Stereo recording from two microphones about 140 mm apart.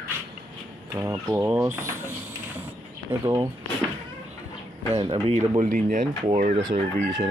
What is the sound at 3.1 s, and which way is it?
Speech, 15° right (ahead or behind).